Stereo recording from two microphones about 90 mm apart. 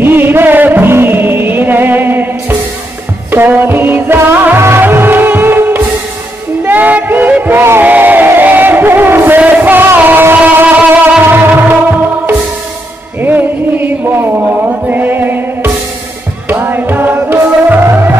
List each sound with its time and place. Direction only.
0.0 s music: 25° right (ahead or behind)
3.3 s music: 20° right (ahead or behind)
13.2 s music: 20° right (ahead or behind)